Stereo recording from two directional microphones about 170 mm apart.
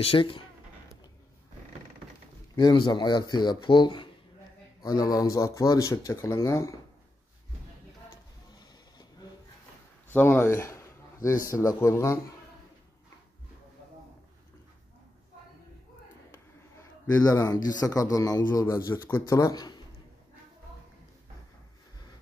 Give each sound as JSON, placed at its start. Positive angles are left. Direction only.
{"t": 0.0, "sound": "speech", "side_deg": 30}
{"t": 2.5, "sound": "a man's voice", "side_deg": 25}
{"t": 8.1, "sound": "a sound", "side_deg": 25}
{"t": 10.1, "sound": "speech", "side_deg": 10}
{"t": 16.7, "sound": "a man's voice", "side_deg": 20}